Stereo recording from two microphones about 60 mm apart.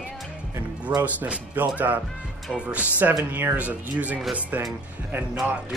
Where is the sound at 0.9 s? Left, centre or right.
Right.